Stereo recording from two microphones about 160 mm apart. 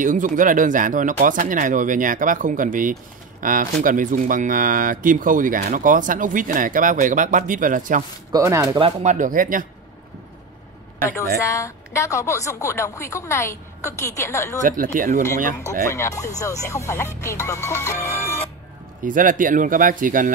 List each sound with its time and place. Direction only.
0.0 s speech: 55° right (ahead or behind)
8.3 s speech: 20° right (ahead or behind)
9.0 s speech: 50° right (ahead or behind)
11.3 s speech: 20° left (ahead or behind)
14.6 s speech: 55° right (ahead or behind)
15.6 s speech: 20° left (ahead or behind)
19.0 s speech: 55° right (ahead or behind)